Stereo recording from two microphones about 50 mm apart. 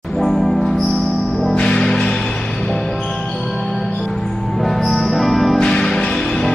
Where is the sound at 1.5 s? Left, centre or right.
Centre.